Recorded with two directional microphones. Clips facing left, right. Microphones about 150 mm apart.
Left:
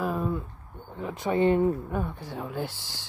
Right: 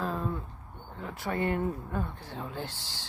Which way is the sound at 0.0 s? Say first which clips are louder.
Left 4 dB; 10° left (ahead or behind).